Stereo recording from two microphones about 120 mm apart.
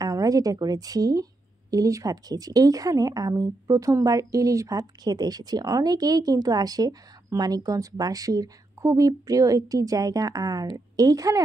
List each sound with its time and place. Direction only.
0.0 s a woman's voice: 30° right (ahead or behind)